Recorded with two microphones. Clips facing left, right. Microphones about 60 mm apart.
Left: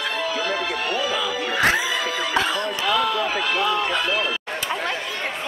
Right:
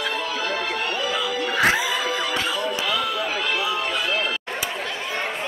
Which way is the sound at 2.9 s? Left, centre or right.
Centre.